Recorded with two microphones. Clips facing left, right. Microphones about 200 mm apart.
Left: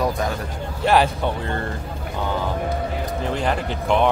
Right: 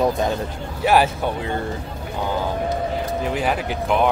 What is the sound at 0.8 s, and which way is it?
Speech, 5° right (ahead or behind).